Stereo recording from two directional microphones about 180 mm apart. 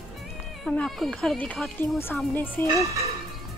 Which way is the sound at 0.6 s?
5° left (ahead or behind).